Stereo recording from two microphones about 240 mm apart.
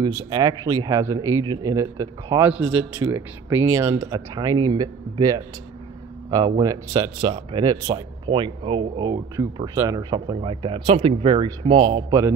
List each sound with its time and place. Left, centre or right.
0.0 s speech: centre
6.6 s speech: centre